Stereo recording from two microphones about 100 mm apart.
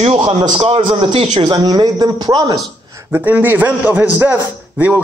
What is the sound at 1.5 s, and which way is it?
A man's voice, 40° right (ahead or behind).